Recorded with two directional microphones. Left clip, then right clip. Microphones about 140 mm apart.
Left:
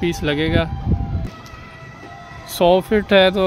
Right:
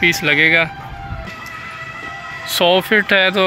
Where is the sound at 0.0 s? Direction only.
20° left (ahead or behind).